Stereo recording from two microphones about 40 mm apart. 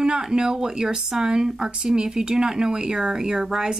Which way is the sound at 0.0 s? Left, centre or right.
Centre.